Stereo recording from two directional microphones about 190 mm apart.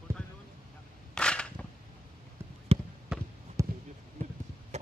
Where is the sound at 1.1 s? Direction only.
5° left (ahead or behind).